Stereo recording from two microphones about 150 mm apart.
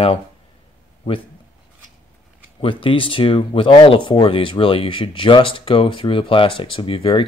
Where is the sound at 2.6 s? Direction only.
35° left (ahead or behind).